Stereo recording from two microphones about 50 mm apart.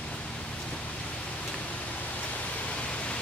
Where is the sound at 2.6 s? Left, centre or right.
Left.